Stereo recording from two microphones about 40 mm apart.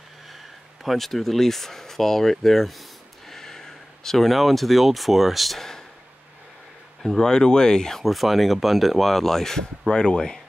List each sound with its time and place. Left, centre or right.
0.8 s speech: centre
5.6 s a sound: centre
7.2 s speech: centre
8.0 s speech: centre
9.8 s speech: left